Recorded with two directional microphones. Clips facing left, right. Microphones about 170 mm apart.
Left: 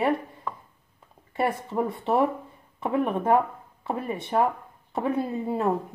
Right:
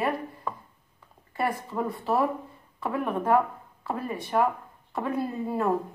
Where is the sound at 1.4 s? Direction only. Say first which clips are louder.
Left 3 dB; 25° left (ahead or behind).